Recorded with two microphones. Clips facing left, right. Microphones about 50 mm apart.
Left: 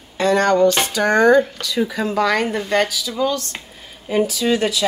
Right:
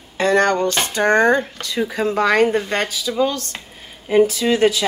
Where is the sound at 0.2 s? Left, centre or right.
Right.